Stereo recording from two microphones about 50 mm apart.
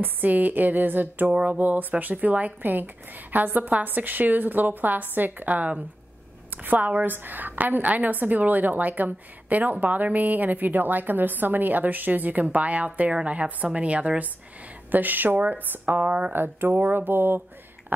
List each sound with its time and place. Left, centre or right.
0.0 s a woman's voice: right